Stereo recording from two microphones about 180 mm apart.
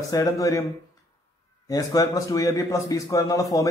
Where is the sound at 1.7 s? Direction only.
20° left (ahead or behind).